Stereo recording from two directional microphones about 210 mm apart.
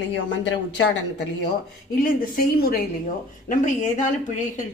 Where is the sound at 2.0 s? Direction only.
45° left (ahead or behind).